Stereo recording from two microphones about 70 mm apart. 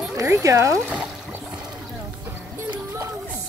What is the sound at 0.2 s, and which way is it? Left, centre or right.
Speech, right.